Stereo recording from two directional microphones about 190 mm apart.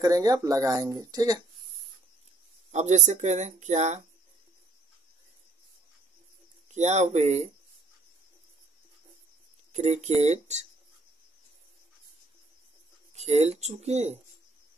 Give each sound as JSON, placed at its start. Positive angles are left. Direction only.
{"t": 0.0, "sound": "speech", "side_deg": -20}
{"t": 2.7, "sound": "speech", "side_deg": -35}
{"t": 6.7, "sound": "speech", "side_deg": -35}
{"t": 9.7, "sound": "speech", "side_deg": -35}
{"t": 13.1, "sound": "speech", "side_deg": -35}